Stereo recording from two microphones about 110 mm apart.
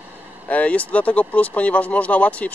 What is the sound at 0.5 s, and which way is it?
Speech, 15° left (ahead or behind).